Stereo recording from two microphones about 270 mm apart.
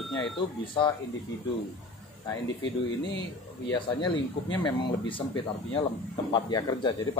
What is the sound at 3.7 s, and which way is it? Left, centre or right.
Speech, centre.